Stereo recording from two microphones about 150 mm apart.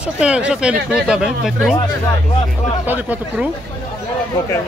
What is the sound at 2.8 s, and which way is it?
Speech, 10° right (ahead or behind).